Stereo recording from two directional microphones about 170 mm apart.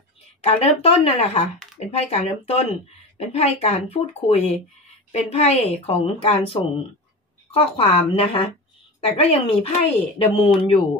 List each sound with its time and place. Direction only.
0.4 s speech: 35° left (ahead or behind)